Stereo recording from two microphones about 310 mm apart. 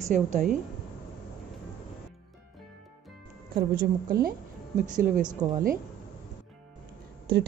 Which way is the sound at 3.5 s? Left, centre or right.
Right.